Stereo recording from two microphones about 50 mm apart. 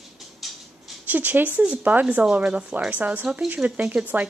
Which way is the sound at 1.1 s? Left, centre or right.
Right.